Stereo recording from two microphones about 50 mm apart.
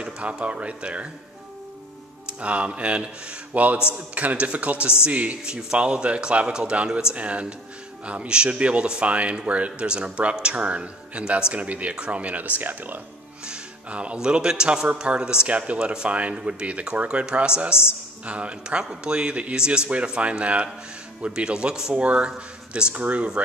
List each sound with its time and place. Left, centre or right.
0.0 s speech: right
2.2 s speech: right
5.4 s a man's voice: centre
7.2 s speech: right
13.5 s speech: right